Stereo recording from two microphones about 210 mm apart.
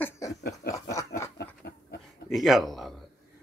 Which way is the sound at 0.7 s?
15° left (ahead or behind).